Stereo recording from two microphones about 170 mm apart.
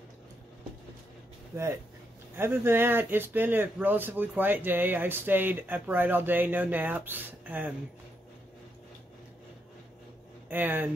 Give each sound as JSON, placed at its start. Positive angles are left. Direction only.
{"t": 1.5, "sound": "speech", "side_deg": -15}
{"t": 10.5, "sound": "speech", "side_deg": -10}